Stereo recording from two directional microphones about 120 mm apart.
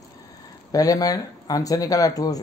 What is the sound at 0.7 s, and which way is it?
Speech, 30° left (ahead or behind).